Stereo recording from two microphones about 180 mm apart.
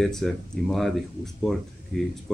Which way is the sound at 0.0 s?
Centre (ahead or behind).